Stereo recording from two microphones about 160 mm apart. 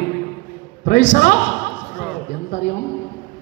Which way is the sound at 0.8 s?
50° left (ahead or behind).